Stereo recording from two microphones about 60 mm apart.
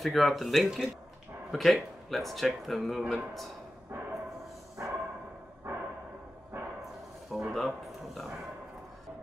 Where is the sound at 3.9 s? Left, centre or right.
Right.